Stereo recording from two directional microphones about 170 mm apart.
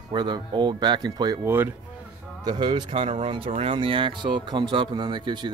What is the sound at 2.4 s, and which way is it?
Speech, 25° right (ahead or behind).